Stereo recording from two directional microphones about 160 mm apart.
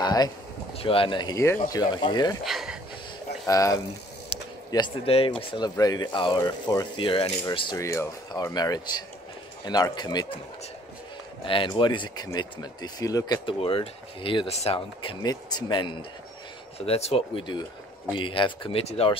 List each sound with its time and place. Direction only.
0.0 s a sound: 25° left (ahead or behind)
0.7 s speech: 35° left (ahead or behind)
2.4 s a sound: centre (ahead or behind)
3.4 s speech: 20° left (ahead or behind)
11.4 s speech: 30° left (ahead or behind)
13.6 s speech: 35° left (ahead or behind)